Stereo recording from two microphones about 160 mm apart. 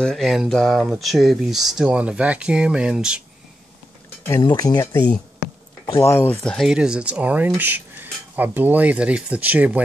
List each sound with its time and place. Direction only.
0.0 s speech: centre (ahead or behind)
4.4 s speech: 25° left (ahead or behind); by 9.8 s 10° right (ahead or behind)